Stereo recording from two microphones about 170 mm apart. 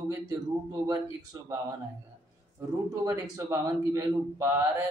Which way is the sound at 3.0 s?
20° right (ahead or behind).